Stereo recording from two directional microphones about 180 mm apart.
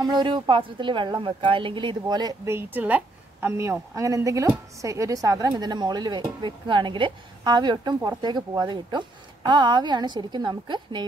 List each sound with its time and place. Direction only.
0.0 s a woman's voice: 25° right (ahead or behind)